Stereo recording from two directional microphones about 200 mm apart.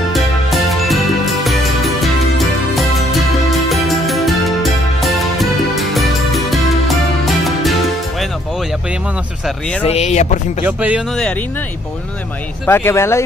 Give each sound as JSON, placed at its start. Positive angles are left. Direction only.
{"t": 0.1, "sound": "music", "side_deg": 0}
{"t": 9.8, "sound": "speech", "side_deg": 35}
{"t": 10.6, "sound": "speech", "side_deg": -10}
{"t": 12.6, "sound": "speech", "side_deg": 10}